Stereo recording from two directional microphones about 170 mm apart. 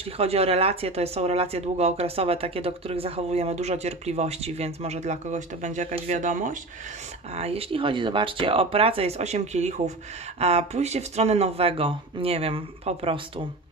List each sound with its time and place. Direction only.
0.2 s speech: 35° right (ahead or behind)
7.3 s speech: 35° right (ahead or behind)